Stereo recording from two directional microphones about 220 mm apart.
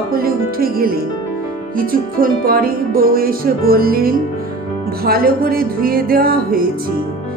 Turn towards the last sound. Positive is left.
turn(degrees=-40)  # may be behind; listen again after turning